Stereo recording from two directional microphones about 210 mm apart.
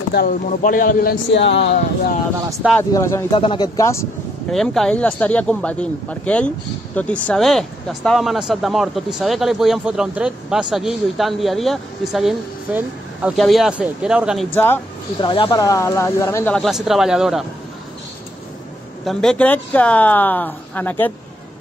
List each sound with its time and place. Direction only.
0.1 s a man's voice: 45° left (ahead or behind)
1.3 s speech: 55° left (ahead or behind)
2.7 s speech: 15° left (ahead or behind)
4.5 s speech: centre (ahead or behind)
15.2 s speech: 25° left (ahead or behind); by 17.5 s centre (ahead or behind)
19.0 s speech: 5° left (ahead or behind)